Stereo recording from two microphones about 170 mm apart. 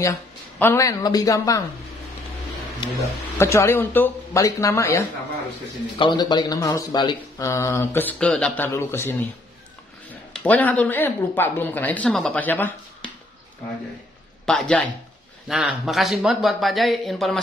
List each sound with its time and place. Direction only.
0.6 s speech: 15° left (ahead or behind)
2.8 s speech: 25° left (ahead or behind)
3.3 s speech: 15° left (ahead or behind)
10.3 s speech: 10° left (ahead or behind)
14.4 s speech: 5° left (ahead or behind)